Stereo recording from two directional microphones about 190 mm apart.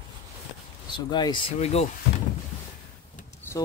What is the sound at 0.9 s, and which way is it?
Speech, 25° left (ahead or behind).